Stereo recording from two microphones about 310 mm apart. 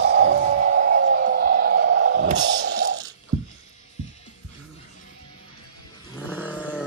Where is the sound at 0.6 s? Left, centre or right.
Right.